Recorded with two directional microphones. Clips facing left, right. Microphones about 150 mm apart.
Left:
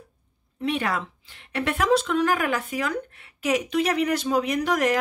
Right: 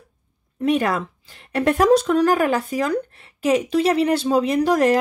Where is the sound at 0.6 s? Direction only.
45° right (ahead or behind).